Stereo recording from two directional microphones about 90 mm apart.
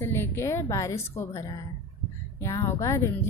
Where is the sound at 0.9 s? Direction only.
30° left (ahead or behind).